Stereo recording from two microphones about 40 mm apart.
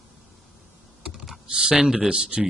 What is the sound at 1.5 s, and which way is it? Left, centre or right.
Speech, right.